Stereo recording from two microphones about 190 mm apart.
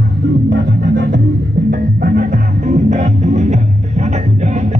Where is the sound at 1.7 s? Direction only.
45° right (ahead or behind).